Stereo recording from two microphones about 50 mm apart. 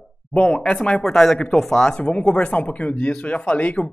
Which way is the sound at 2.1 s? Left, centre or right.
Left.